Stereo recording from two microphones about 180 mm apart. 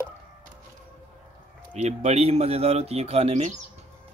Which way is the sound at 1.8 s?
35° right (ahead or behind).